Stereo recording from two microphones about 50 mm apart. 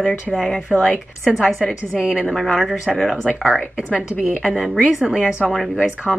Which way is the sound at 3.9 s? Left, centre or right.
Right.